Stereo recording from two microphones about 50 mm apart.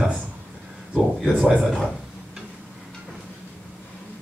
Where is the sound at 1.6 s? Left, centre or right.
Centre.